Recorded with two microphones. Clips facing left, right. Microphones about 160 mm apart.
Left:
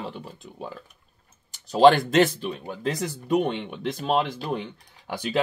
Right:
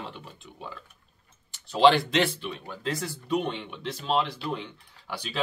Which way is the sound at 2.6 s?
15° left (ahead or behind).